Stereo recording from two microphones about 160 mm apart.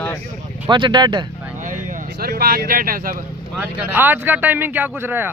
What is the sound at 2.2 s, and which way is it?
Speech, 70° right (ahead or behind).